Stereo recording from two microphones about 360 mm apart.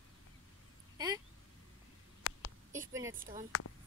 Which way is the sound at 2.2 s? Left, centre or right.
Left.